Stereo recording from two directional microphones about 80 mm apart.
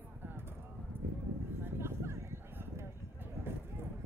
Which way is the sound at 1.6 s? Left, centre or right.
Right.